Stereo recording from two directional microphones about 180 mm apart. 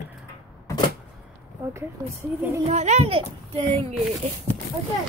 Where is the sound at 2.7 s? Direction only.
40° right (ahead or behind).